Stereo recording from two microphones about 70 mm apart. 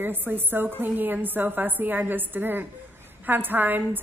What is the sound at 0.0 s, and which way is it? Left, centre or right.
A woman's voice, right.